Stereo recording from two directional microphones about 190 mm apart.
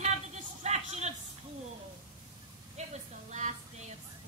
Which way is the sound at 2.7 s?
35° right (ahead or behind).